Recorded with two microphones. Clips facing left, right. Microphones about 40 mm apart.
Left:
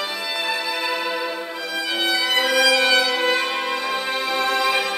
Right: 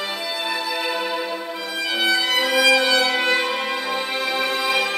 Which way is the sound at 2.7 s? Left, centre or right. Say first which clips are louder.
Even; centre.